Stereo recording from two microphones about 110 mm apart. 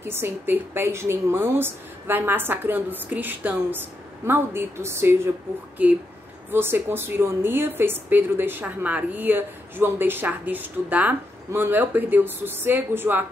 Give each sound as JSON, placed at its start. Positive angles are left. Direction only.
{"t": 0.0, "sound": "a woman's voice", "side_deg": -20}